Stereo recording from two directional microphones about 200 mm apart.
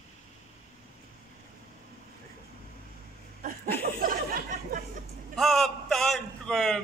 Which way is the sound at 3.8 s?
45° right (ahead or behind).